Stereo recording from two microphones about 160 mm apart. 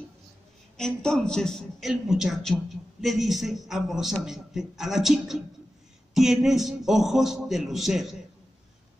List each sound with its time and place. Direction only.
0.7 s a man's voice: 5° left (ahead or behind)